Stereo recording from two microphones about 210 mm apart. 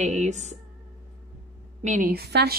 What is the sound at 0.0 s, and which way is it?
Speech, 35° right (ahead or behind).